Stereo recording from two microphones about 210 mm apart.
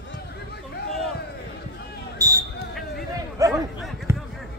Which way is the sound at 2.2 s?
15° right (ahead or behind).